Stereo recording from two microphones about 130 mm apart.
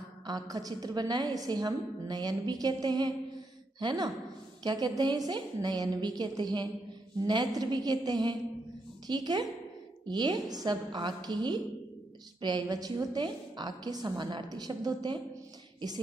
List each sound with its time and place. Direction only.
0.3 s a woman's voice: 30° right (ahead or behind)